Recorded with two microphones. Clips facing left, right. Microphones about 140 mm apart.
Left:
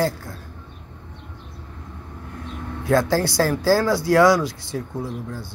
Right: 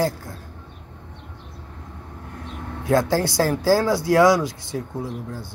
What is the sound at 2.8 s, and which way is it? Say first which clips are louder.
Speech: even; 20° right (ahead or behind).